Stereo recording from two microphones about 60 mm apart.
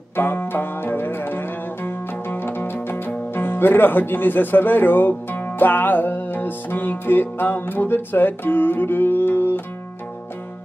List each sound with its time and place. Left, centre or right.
0.1 s music: left
3.3 s speech: left